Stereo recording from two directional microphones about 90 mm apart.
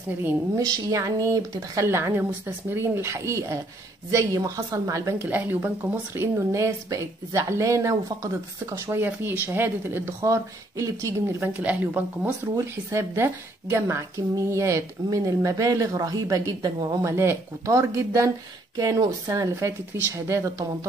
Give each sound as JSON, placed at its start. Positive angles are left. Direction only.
{"t": 0.6, "sound": "a woman's voice", "side_deg": -40}
{"t": 1.9, "sound": "a woman's voice", "side_deg": -25}
{"t": 5.2, "sound": "a woman's voice", "side_deg": -25}
{"t": 8.9, "sound": "speech", "side_deg": -25}
{"t": 11.3, "sound": "speech", "side_deg": -15}
{"t": 12.5, "sound": "a woman's voice", "side_deg": -30}